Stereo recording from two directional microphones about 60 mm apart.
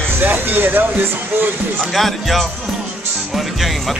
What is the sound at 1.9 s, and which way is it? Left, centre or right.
Speech, centre.